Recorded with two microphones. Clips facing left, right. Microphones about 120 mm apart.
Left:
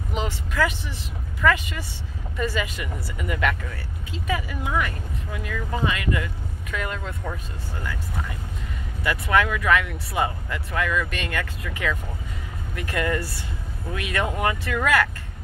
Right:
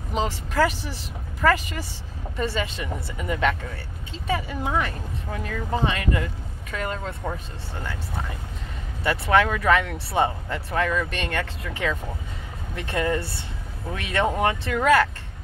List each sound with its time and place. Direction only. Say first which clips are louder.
0.1 s speech: right 3 dB; 35° right (ahead or behind)